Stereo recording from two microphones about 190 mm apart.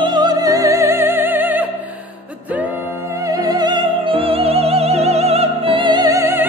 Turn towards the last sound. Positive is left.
turn(degrees=-15)  # may be behind; listen again after turning